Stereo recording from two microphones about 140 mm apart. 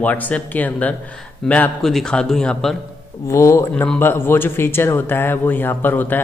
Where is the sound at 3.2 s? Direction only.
20° left (ahead or behind).